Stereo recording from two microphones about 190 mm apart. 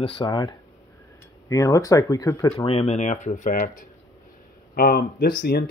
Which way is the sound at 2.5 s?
30° left (ahead or behind).